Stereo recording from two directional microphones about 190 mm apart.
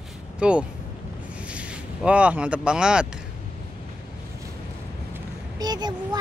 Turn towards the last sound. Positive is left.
turn(degrees=-20)  # may be behind; listen again after turning